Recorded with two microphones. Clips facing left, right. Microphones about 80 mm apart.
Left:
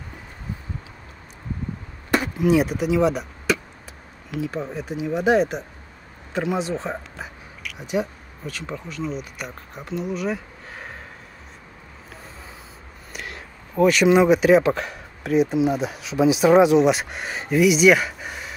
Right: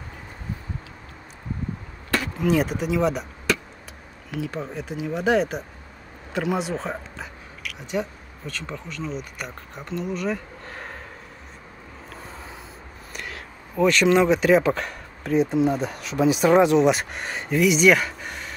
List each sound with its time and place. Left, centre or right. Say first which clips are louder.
2.0 s a sound: left 4 dB; centre
2.4 s speech: left 2 dB; centre
13.1 s speech: left 1 dB; centre